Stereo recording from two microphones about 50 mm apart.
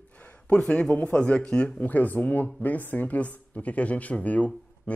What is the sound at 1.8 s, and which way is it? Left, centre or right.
A man's voice, left.